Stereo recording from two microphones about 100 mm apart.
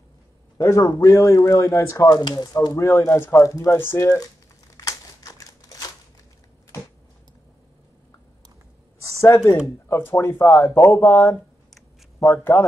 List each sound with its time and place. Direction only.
0.6 s speech: 35° left (ahead or behind)
2.0 s speech: 45° left (ahead or behind)
3.0 s speech: 25° left (ahead or behind)
4.7 s crumpling: 35° left (ahead or behind)
9.2 s speech: 30° left (ahead or behind)